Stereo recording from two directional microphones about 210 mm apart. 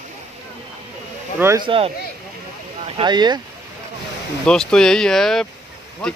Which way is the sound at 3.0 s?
20° right (ahead or behind).